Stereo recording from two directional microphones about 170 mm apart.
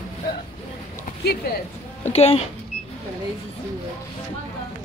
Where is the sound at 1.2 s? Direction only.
70° left (ahead or behind).